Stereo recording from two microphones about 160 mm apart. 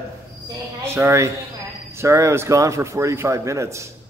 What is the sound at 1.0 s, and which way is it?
A man's voice, 15° right (ahead or behind).